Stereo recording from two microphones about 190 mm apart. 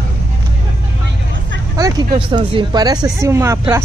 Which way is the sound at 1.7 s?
20° right (ahead or behind).